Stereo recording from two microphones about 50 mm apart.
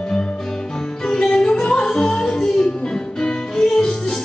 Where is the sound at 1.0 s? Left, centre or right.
Centre.